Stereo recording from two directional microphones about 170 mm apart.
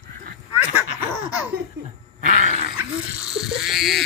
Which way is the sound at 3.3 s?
Centre (ahead or behind).